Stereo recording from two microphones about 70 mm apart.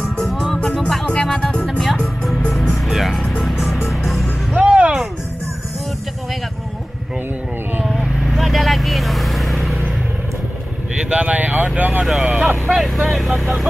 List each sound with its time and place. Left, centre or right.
0.2 s music: centre
4.6 s music: centre
7.8 s vehicle: centre
11.0 s vehicle: centre
12.1 s vehicle: centre